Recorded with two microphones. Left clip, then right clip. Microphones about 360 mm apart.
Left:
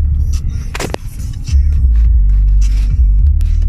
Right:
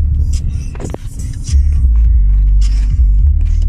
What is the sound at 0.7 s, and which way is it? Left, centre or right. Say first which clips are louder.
Music: left 7 dB; left.